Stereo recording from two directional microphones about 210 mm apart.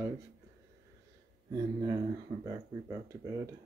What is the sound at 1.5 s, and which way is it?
Speech, 15° right (ahead or behind).